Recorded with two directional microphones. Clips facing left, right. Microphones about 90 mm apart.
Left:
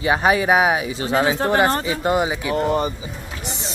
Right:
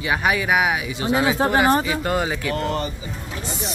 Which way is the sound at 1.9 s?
20° left (ahead or behind).